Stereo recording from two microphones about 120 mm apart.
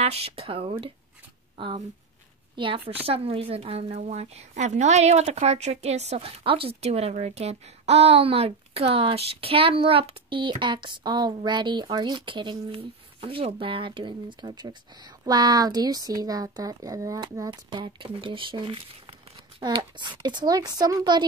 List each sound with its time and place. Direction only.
0.0 s speech: 55° right (ahead or behind)
2.5 s a woman's voice: 45° right (ahead or behind)
19.6 s speech: 35° right (ahead or behind)